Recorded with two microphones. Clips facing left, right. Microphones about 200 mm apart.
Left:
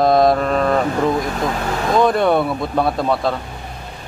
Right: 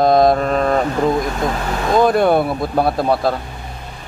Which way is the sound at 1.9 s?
5° right (ahead or behind).